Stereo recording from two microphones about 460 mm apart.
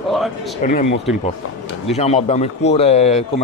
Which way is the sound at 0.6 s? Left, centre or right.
Centre.